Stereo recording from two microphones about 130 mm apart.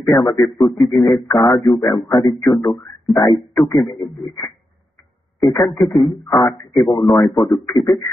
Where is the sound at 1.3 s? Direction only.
30° left (ahead or behind).